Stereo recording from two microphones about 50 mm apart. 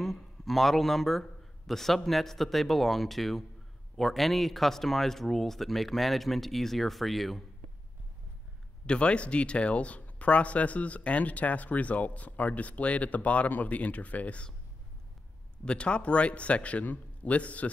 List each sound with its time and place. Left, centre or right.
0.0 s a man's voice: centre
8.8 s speech: left
15.6 s speech: left